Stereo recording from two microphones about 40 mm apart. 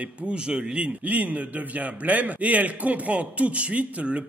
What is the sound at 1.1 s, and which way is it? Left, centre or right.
A man's voice, right.